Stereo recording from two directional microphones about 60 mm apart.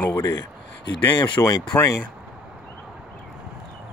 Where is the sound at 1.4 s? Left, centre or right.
Left.